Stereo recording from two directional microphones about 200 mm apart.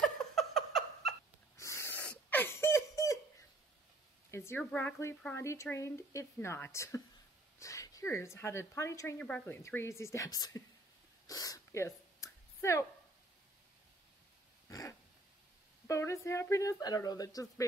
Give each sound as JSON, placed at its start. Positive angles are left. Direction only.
{"t": 0.4, "sound": "a sound", "side_deg": 0}
{"t": 1.6, "sound": "wheeze", "side_deg": 15}
{"t": 4.3, "sound": "a woman's voice", "side_deg": 10}
{"t": 11.2, "sound": "a sound", "side_deg": 15}
{"t": 14.7, "sound": "dog", "side_deg": 15}
{"t": 15.9, "sound": "a woman's voice", "side_deg": 15}